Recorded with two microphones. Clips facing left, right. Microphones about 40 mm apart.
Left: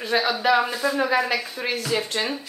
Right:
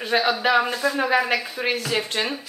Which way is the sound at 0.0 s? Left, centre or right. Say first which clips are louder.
Right 1 dB; centre.